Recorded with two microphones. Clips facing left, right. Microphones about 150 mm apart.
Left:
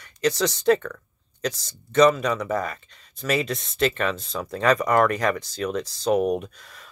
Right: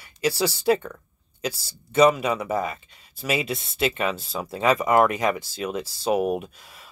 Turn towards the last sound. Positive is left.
turn(degrees=-5)  # may be behind; listen again after turning